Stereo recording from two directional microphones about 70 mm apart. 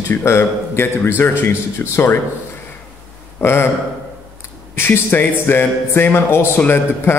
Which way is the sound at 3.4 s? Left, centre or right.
Left.